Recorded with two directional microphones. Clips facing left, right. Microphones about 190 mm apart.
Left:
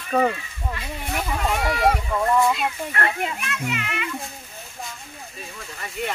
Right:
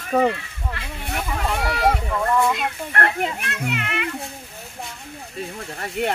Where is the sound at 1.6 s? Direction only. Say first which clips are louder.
Even; centre (ahead or behind).